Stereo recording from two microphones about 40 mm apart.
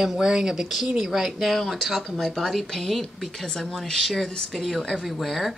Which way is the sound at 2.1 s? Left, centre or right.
Centre.